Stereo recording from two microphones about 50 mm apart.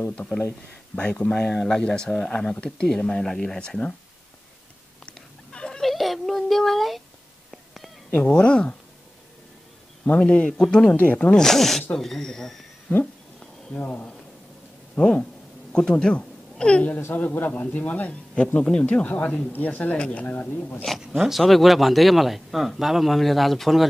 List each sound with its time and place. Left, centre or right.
0.2 s speech: left
0.9 s speech: left
1.5 s speech: centre
5.0 s a sound: centre
5.8 s a sound: centre
7.5 s whispering: centre
8.1 s speech: centre
10.1 s speech: left
12.9 s a sound: left
13.7 s speech: left
15.7 s speech: centre
19.0 s speech: left
20.2 s speech: left
21.1 s speech: centre